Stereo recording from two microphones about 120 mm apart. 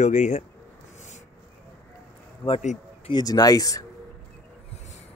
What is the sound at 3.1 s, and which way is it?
Speech, 35° left (ahead or behind).